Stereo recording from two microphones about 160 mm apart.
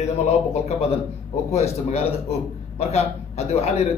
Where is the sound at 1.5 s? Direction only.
40° left (ahead or behind).